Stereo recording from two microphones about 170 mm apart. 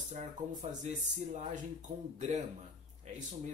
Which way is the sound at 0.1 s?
40° right (ahead or behind).